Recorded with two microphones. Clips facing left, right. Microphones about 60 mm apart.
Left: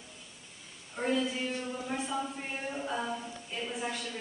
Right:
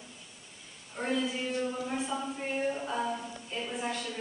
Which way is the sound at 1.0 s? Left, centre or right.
Centre.